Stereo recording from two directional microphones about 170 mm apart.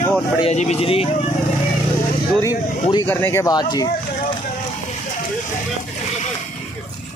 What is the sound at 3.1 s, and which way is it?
Speech, 15° left (ahead or behind).